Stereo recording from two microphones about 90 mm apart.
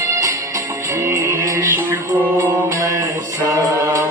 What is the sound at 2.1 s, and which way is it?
Mantra, 15° right (ahead or behind).